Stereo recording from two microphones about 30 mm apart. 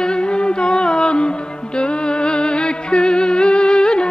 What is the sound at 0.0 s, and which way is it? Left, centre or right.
Music, left.